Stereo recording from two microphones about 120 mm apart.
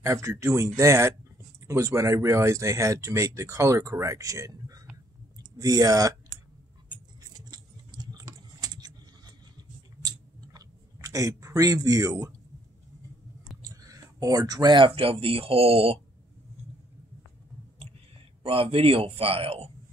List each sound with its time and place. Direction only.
0.0 s speech: 25° right (ahead or behind)
7.2 s typing: 35° right (ahead or behind)
10.0 s chewing: 35° right (ahead or behind)
13.7 s speech: 30° right (ahead or behind); by 16.0 s 55° right (ahead or behind)
18.4 s a man's voice: 50° right (ahead or behind)